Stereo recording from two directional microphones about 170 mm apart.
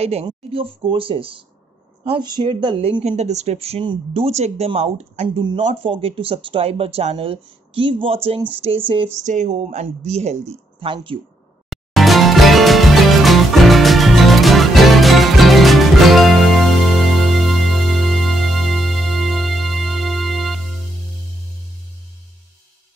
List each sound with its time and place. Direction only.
0.0 s speech: 35° right (ahead or behind)
3.0 s speech: 40° right (ahead or behind)
5.4 s speech: 25° right (ahead or behind)
9.1 s speech: 45° right (ahead or behind)
11.7 s music: centre (ahead or behind)